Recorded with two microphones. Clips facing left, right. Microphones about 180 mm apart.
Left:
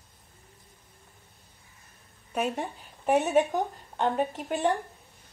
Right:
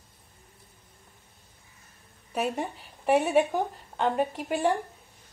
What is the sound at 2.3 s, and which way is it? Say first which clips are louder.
A woman's voice: even; 5° right (ahead or behind).